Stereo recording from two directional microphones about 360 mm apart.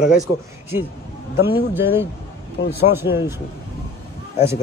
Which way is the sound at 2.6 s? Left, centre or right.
Left.